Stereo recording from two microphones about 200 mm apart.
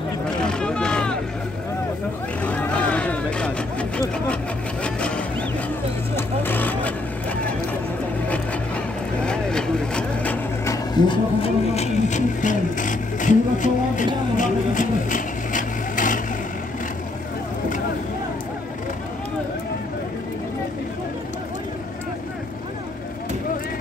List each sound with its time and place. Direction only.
0.4 s vehicle: 5° left (ahead or behind)
2.4 s vehicle: 5° left (ahead or behind)
4.8 s a sound: 5° left (ahead or behind)
6.1 s vehicle: 10° left (ahead or behind)
9.2 s vehicle: 5° left (ahead or behind)
11.4 s vehicle: 30° left (ahead or behind)